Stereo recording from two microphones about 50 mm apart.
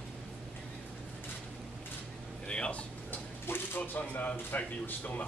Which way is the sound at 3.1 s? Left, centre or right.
Left.